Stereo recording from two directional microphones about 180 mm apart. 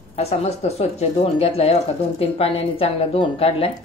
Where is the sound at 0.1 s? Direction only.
35° left (ahead or behind).